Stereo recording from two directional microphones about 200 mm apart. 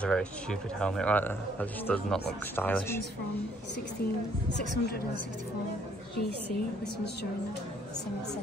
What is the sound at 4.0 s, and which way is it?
Speech, 50° left (ahead or behind).